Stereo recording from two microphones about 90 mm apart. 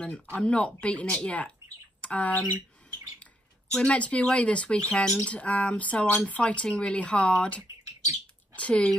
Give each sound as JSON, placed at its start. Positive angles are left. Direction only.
{"t": 0.0, "sound": "speech", "side_deg": 10}
{"t": 3.7, "sound": "speech", "side_deg": 15}